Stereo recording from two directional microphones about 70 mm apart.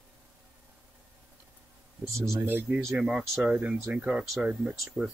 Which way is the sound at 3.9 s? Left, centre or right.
Centre.